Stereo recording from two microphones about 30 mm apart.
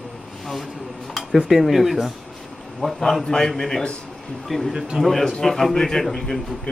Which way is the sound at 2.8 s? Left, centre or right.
Left.